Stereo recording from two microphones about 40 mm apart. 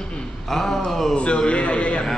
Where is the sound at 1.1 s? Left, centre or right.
Left.